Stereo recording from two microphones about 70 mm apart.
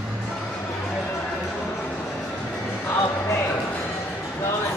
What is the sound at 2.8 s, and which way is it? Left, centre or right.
Music, left.